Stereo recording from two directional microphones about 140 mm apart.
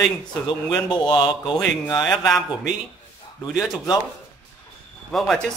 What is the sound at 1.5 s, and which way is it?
Speech, 5° left (ahead or behind).